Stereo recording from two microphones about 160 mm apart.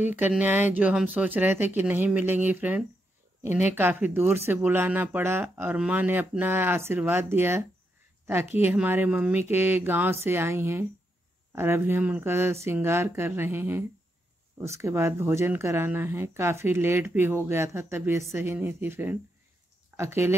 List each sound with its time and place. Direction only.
0.1 s speech: 10° right (ahead or behind)